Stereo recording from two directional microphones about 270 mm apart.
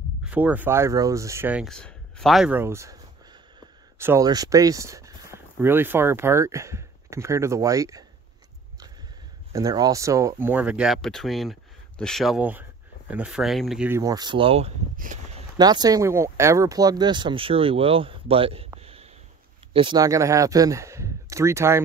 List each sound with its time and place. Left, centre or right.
0.2 s speech: centre
4.0 s speech: centre
9.5 s speech: centre
15.5 s speech: centre
18.8 s a sound: right
19.7 s speech: centre